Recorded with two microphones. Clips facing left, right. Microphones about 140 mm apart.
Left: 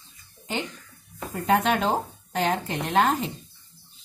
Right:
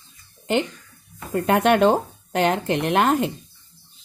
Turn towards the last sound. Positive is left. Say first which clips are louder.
# right 4 dB
turn(degrees=-65)  # may be behind; listen again after turning